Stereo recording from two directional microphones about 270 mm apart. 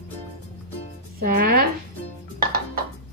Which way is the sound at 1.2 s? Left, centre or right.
Right.